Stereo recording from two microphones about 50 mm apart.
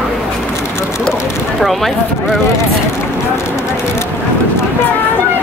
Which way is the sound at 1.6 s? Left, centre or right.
Centre.